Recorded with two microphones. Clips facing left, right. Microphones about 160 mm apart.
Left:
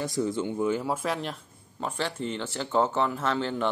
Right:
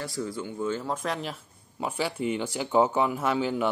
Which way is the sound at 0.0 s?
20° left (ahead or behind).